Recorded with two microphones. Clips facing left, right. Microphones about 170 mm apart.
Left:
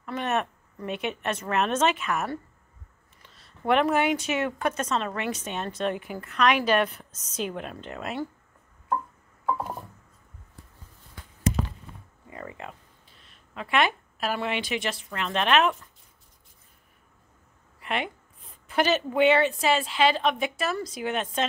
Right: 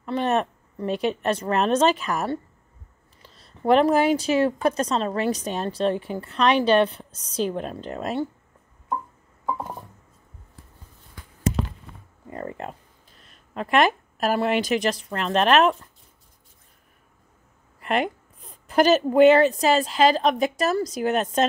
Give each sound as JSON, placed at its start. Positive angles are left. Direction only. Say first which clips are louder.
{"t": 0.0, "sound": "a woman's voice", "louder": "right 5 dB", "side_deg": -30}
{"t": 12.3, "sound": "a sound", "louder": "right 6 dB", "side_deg": -45}
{"t": 13.6, "sound": "a woman's voice", "louder": "right 5 dB", "side_deg": -40}
{"t": 17.7, "sound": "a woman's voice", "louder": "right 6 dB", "side_deg": -45}